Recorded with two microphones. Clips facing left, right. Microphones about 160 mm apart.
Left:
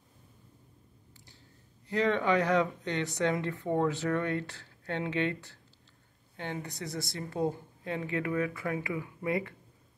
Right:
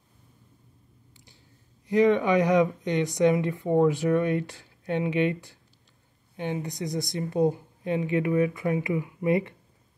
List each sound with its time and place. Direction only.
1.9 s speech: 15° right (ahead or behind)